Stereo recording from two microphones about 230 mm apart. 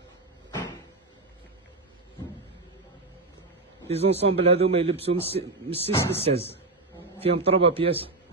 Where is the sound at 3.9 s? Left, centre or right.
Right.